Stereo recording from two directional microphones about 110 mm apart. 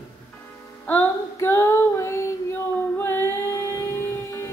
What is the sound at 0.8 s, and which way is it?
Female singing, 20° left (ahead or behind).